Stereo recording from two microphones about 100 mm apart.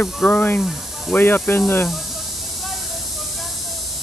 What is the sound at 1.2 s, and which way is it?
Speech, 20° left (ahead or behind).